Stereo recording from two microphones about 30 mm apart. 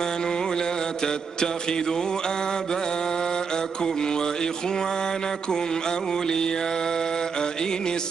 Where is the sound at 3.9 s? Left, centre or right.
Left.